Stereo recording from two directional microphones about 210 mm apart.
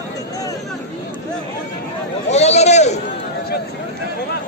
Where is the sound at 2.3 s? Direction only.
30° left (ahead or behind).